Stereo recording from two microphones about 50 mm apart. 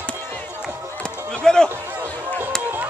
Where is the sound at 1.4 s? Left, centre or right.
Centre.